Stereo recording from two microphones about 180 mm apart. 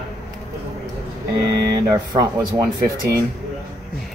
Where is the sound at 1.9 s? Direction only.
20° right (ahead or behind).